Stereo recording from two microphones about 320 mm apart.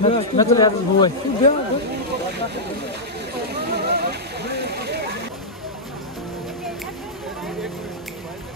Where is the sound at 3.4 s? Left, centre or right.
Right.